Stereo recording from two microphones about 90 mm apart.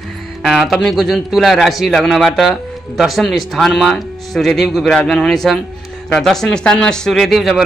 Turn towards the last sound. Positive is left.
turn(degrees=0)  # may be behind; listen again after turning